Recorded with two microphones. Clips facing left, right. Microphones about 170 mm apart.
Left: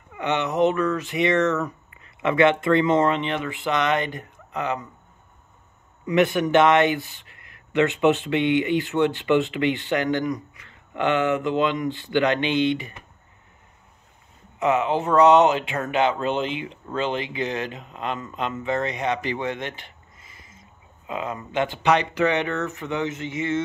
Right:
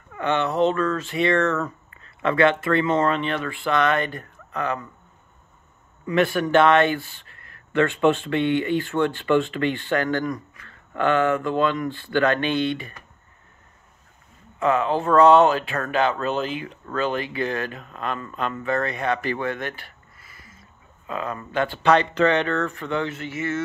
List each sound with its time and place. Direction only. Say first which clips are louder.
0.1 s speech: right 1 dB; 15° left (ahead or behind)
6.0 s speech: left 1 dB; 15° left (ahead or behind)
14.6 s speech: even; 20° left (ahead or behind)